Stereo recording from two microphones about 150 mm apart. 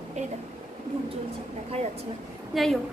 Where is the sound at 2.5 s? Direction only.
Centre (ahead or behind).